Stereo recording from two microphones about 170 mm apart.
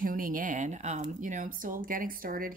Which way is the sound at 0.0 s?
55° right (ahead or behind).